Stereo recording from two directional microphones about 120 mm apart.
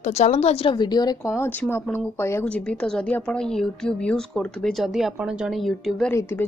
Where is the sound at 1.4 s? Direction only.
20° left (ahead or behind).